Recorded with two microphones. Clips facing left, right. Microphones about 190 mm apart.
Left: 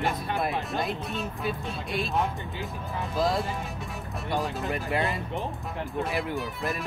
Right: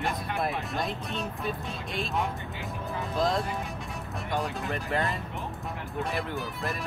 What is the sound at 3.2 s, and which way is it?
Speech, 5° left (ahead or behind).